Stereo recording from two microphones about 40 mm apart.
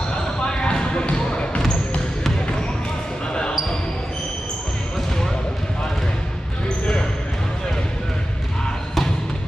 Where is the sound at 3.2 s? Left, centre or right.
Left.